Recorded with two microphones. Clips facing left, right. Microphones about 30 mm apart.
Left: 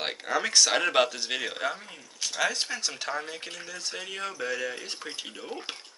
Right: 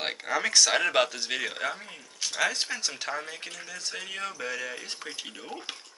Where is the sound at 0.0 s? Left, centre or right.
Centre.